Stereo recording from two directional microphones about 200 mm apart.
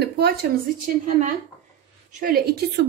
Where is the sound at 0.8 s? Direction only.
40° right (ahead or behind).